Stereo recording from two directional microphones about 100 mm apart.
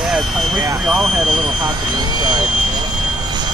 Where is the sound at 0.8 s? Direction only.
5° right (ahead or behind).